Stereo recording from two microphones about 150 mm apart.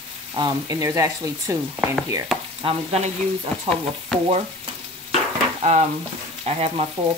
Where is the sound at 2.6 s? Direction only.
35° right (ahead or behind).